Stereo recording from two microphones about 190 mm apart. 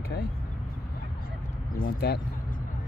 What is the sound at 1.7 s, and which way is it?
Speech, 55° left (ahead or behind).